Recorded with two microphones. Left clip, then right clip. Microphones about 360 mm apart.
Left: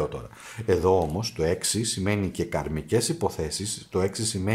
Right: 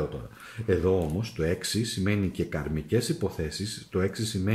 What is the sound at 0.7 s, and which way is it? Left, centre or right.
Speech, centre.